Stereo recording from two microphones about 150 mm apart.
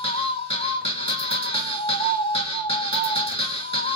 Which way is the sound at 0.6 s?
35° left (ahead or behind).